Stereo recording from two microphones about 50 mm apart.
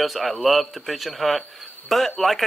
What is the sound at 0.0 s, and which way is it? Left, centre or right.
Speech, centre.